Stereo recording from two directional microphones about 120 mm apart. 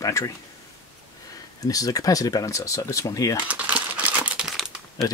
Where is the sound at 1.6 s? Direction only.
30° left (ahead or behind).